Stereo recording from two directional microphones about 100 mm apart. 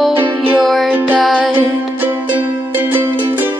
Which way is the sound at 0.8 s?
15° right (ahead or behind).